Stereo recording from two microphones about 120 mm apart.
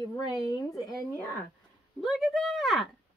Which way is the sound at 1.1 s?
20° left (ahead or behind).